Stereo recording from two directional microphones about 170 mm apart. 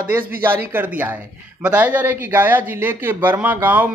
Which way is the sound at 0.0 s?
10° right (ahead or behind).